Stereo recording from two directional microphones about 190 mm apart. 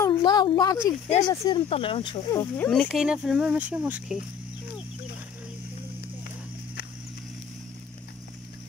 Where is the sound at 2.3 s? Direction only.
10° left (ahead or behind); by 4.2 s 5° right (ahead or behind).